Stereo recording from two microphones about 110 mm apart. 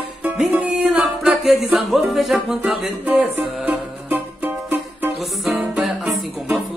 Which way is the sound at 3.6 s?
15° right (ahead or behind).